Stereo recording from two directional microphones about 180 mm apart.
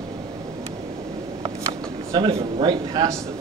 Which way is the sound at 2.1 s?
30° right (ahead or behind).